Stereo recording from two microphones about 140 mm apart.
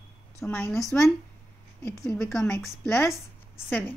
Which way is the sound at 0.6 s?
20° left (ahead or behind).